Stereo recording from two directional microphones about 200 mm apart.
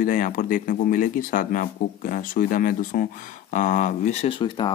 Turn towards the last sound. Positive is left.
turn(degrees=25)  # may be behind; listen again after turning